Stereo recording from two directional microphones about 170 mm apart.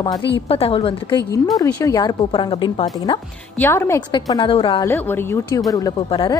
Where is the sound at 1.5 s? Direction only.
20° left (ahead or behind).